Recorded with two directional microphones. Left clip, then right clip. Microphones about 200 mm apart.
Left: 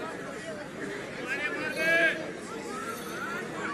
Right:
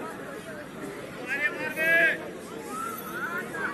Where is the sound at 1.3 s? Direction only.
45° left (ahead or behind).